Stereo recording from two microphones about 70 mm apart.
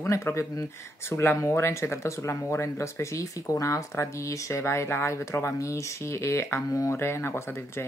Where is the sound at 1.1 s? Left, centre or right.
Left.